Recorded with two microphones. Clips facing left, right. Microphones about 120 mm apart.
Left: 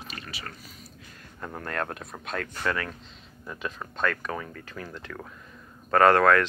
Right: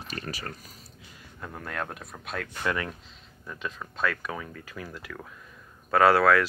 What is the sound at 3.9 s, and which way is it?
Speech, 5° right (ahead or behind).